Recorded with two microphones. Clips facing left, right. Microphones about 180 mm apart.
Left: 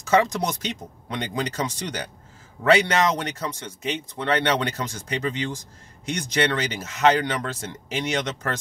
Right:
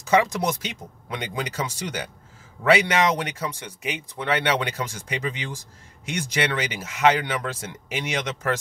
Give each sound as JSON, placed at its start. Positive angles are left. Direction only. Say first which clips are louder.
{"t": 0.0, "sound": "speech", "louder": "even", "side_deg": -10}